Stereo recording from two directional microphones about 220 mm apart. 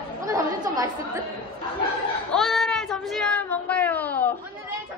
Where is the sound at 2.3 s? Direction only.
Centre (ahead or behind).